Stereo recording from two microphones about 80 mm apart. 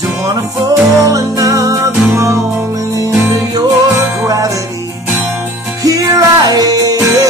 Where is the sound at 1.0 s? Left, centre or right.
Right.